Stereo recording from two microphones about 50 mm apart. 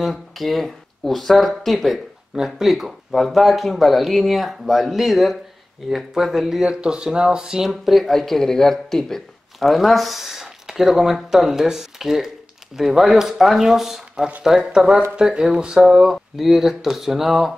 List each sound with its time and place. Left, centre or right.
0.0 s speech: centre
2.3 s speech: centre
6.6 s speech: centre
7.8 s speech: centre